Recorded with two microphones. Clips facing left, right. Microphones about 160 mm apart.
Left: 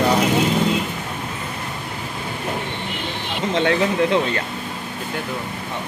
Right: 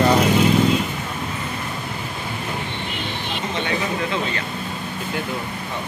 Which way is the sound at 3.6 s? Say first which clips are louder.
Left 7 dB; 80° left.